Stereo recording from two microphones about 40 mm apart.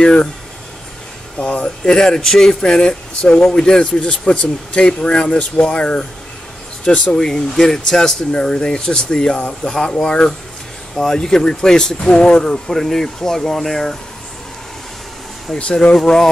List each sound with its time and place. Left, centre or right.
0.0 s speech: left
1.4 s speech: left
2.0 s speech: centre
7.2 s speech: centre
11.0 s speech: centre
15.5 s speech: left
16.0 s speech: centre